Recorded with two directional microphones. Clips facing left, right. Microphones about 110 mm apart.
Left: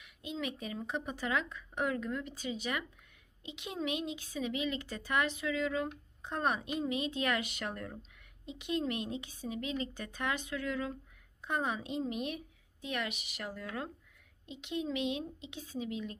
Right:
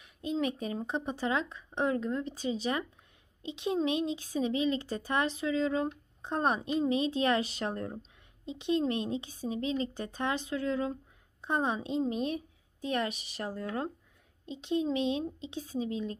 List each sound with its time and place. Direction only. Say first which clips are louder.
0.0 s a child's voice: right 7 dB; 40° right (ahead or behind)